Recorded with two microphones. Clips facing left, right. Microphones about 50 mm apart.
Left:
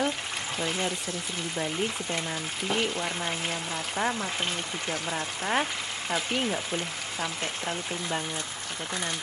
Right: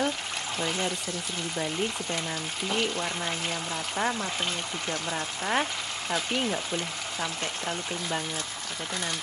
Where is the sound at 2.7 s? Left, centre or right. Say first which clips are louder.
Even; centre.